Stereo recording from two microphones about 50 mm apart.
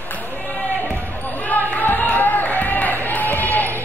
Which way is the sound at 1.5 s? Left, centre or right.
Left.